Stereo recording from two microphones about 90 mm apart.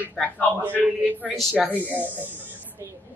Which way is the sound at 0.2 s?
Centre (ahead or behind).